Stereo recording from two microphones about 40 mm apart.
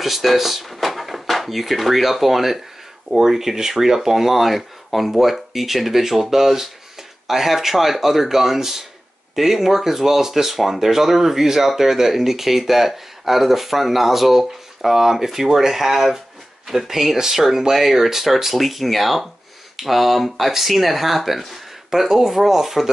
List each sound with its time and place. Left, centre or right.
0.0 s speech: centre